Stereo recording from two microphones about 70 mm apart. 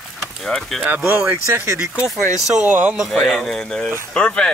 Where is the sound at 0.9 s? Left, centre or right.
Right.